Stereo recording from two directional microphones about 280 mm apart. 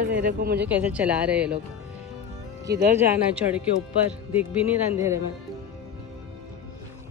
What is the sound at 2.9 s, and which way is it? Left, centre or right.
Speech, centre.